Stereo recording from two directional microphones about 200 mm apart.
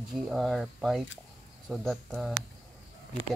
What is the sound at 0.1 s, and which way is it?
Speech, centre (ahead or behind).